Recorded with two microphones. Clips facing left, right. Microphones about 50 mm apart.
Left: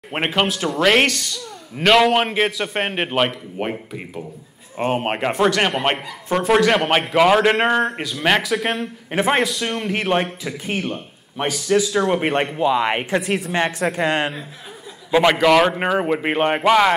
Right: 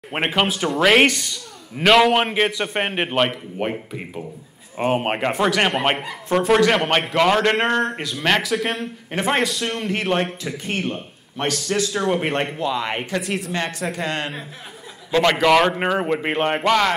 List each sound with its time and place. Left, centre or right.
0.1 s a man's voice: centre; by 13.2 s left
13.2 s a man's voice: centre
14.0 s a man's voice: left
15.3 s a man's voice: centre